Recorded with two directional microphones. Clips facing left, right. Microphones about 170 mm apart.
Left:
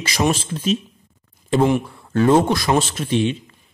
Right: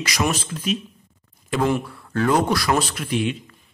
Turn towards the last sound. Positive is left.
turn(degrees=25)  # may be behind; listen again after turning